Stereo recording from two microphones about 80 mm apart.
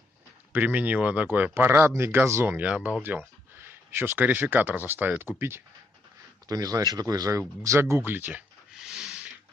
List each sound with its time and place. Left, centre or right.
0.5 s speech: right
2.5 s speech: centre
6.4 s speech: right
8.7 s a sound: centre